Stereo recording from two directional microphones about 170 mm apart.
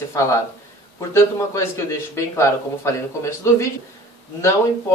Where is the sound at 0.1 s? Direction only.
20° left (ahead or behind).